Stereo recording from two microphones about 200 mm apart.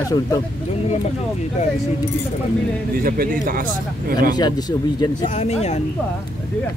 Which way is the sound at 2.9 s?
45° right (ahead or behind).